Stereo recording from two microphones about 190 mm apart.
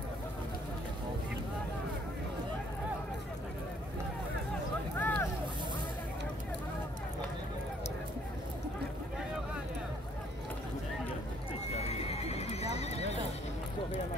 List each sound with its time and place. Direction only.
4.9 s boat: 10° left (ahead or behind)
11.7 s horse: 35° left (ahead or behind)